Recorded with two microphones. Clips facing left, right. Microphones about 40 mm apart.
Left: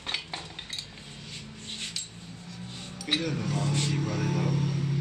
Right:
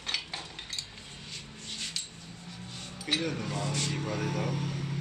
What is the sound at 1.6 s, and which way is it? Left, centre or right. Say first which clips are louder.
Rub: left 1 dB; left.